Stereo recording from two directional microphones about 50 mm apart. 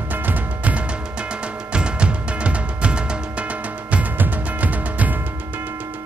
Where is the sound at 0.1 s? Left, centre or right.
Right.